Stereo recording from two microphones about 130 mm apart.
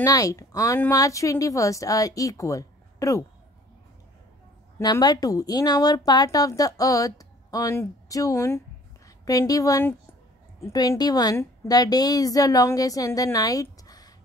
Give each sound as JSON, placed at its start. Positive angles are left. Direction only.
{"t": 0.0, "sound": "a woman's voice", "side_deg": 25}
{"t": 4.8, "sound": "a woman's voice", "side_deg": 30}